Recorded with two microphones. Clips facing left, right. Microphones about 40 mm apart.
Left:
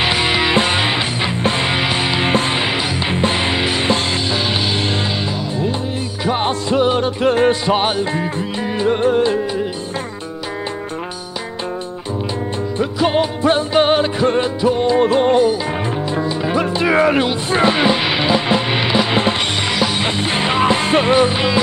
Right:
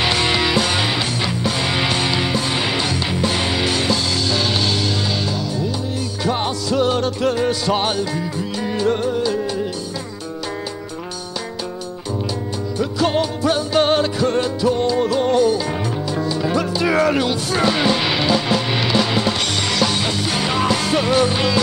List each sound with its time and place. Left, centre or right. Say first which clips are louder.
0.0 s music: left 2 dB; centre
6.2 s music: left 3 dB; left
8.6 s music: left 1 dB; left
9.0 s music: left 5 dB; left
13.0 s music: left 3 dB; left